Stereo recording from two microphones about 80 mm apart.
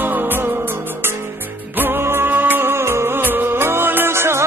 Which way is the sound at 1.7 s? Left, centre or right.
Right.